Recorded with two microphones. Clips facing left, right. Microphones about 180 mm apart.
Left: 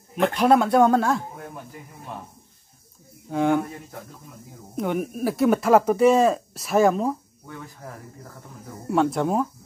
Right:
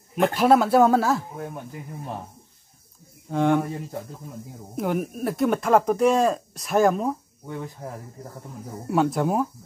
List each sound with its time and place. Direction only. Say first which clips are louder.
0.2 s speech: even; 5° right (ahead or behind)
3.3 s speech: even; centre (ahead or behind)
4.7 s speech: even; centre (ahead or behind)
7.8 s speech: right 4 dB; 30° right (ahead or behind)
8.9 s speech: even; centre (ahead or behind)